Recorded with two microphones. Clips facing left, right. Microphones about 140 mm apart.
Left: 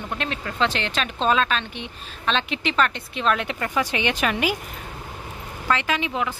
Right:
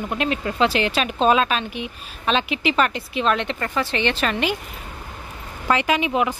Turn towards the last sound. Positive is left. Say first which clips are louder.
# right 5 dB
turn(degrees=-15)  # may be behind; listen again after turning